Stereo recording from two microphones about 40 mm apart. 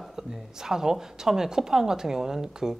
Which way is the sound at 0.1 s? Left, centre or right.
Centre.